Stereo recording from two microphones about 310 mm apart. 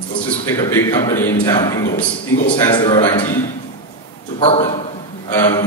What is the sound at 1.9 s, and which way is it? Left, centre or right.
Speech, left.